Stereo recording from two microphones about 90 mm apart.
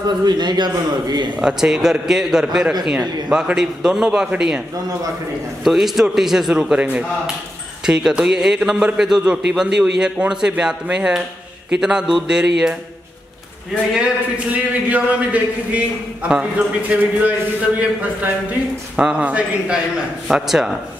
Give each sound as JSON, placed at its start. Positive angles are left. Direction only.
{"t": 0.2, "sound": "a man's voice", "side_deg": -55}
{"t": 1.4, "sound": "a man's voice", "side_deg": -5}
{"t": 13.9, "sound": "a man's voice", "side_deg": -10}